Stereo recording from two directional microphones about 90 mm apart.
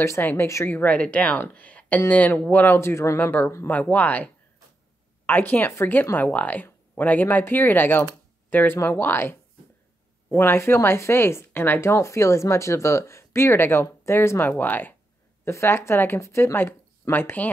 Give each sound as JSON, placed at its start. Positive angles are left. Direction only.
{"t": 0.0, "sound": "speech", "side_deg": 25}